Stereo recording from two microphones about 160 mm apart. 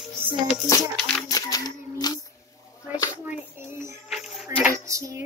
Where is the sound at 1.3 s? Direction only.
25° left (ahead or behind).